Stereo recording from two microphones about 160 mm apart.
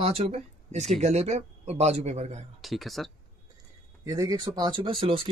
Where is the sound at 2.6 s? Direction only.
Centre (ahead or behind).